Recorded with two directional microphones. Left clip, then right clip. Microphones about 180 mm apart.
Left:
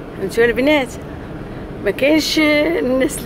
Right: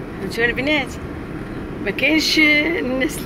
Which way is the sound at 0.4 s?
35° left (ahead or behind).